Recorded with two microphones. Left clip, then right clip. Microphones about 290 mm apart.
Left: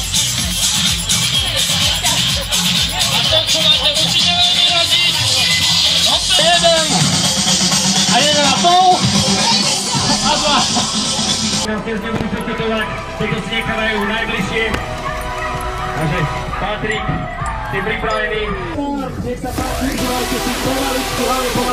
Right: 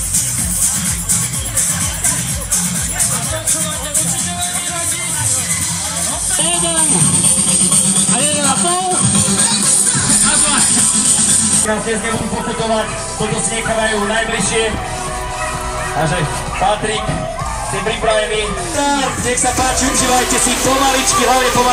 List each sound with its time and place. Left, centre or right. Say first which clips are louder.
8.1 s music: left 5 dB; left